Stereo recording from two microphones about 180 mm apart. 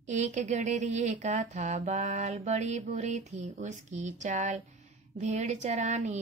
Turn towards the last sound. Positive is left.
turn(degrees=-40)  # may be behind; listen again after turning